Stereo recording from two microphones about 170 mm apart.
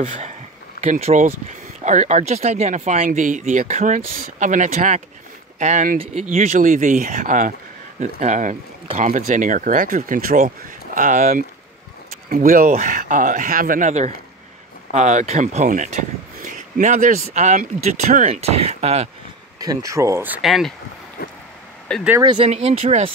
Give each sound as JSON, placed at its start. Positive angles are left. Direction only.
{"t": 0.8, "sound": "speech", "side_deg": -45}
{"t": 19.6, "sound": "speech", "side_deg": -20}
{"t": 20.4, "sound": "speech", "side_deg": 0}
{"t": 21.2, "sound": "a sound", "side_deg": 60}
{"t": 21.9, "sound": "speech", "side_deg": 5}
{"t": 22.3, "sound": "speech", "side_deg": -35}